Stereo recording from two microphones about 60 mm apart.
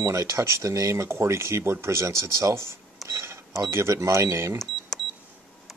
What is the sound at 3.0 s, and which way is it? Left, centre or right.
Cash register, right.